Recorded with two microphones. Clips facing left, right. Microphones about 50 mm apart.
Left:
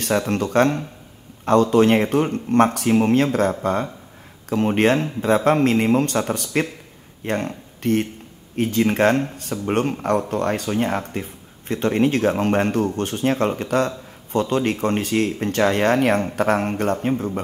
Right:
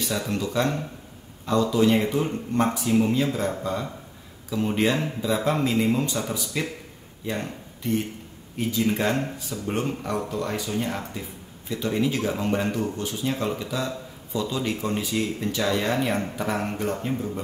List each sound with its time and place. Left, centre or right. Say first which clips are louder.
0.3 s speech: left 6 dB; left